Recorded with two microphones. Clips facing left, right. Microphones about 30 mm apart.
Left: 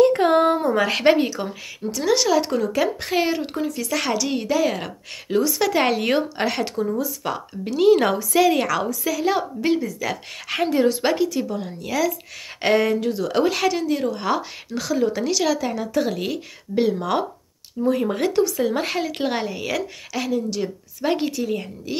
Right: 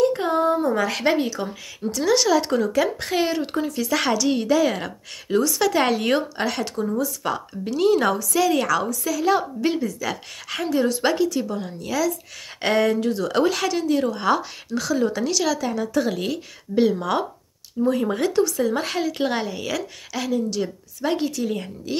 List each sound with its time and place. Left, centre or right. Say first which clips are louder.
0.0 s a sound: left 4 dB; left
0.6 s a woman's voice: left 2 dB; centre
1.1 s speech: left 2 dB; centre
6.7 s speech: even; centre
8.2 s speech: left 2 dB; left
10.6 s a woman's voice: left 3 dB; centre
11.0 s speech: even; centre
21.0 s speech: left 1 dB; centre
21.5 s speech: left 1 dB; centre